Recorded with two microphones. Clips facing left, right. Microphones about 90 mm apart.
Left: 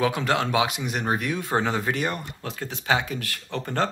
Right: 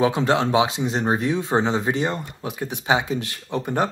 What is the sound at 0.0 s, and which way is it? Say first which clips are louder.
Speech: right 4 dB; 25° right (ahead or behind).